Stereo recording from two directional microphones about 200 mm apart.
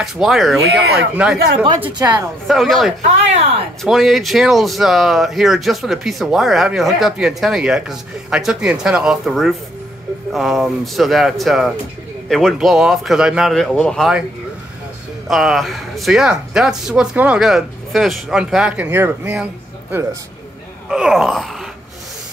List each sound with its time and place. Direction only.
0.0 s speech: centre (ahead or behind)
0.7 s speech: 55° right (ahead or behind)
1.1 s speech: 5° right (ahead or behind)
2.0 s speech: 20° right (ahead or behind)
2.4 s speech: centre (ahead or behind)
15.2 s speech: centre (ahead or behind)